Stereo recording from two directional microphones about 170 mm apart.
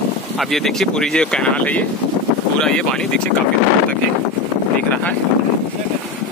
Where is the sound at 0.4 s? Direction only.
Centre (ahead or behind).